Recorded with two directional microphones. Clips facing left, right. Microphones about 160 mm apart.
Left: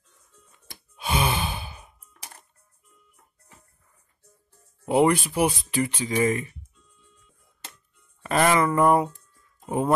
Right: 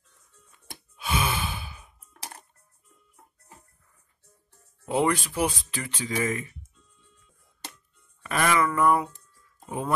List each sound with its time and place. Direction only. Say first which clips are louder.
0.9 s sigh: left 3 dB; 20° left (ahead or behind)
4.8 s speech: left 5 dB; 15° left (ahead or behind)
6.0 s speech: left 3 dB; 25° left (ahead or behind)
8.2 s speech: left 3 dB; 30° left (ahead or behind)